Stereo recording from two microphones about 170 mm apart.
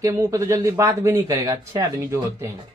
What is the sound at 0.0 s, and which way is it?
Speech, 20° right (ahead or behind).